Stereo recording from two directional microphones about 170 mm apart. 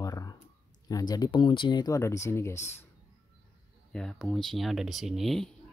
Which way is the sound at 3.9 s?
5° left (ahead or behind).